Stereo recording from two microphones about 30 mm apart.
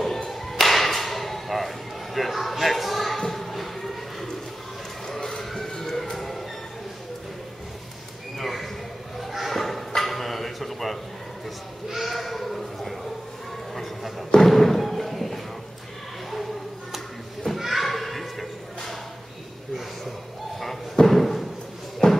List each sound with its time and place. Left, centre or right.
0.0 s whip: centre
2.1 s a sound: centre
5.0 s a sound: centre
8.4 s horse: centre
9.5 s chicken: centre
12.0 s sheep: centre
14.3 s thump: centre
17.7 s a sound: centre
21.0 s slam: centre
22.0 s music: left